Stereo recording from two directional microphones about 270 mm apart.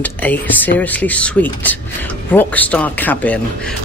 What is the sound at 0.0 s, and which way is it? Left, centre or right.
Speech, centre.